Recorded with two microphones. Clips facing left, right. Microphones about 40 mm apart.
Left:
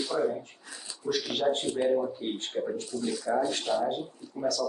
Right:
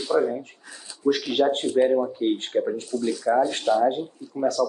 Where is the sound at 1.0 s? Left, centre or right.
Right.